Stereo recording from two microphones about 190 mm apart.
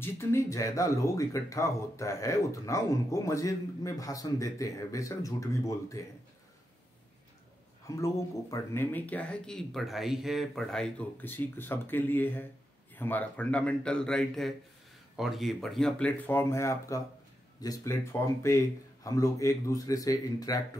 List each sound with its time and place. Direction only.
0.0 s speech: 15° left (ahead or behind)
7.8 s speech: 15° left (ahead or behind)